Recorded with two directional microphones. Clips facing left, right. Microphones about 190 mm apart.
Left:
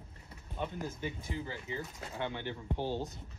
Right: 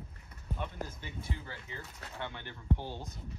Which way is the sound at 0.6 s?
15° left (ahead or behind).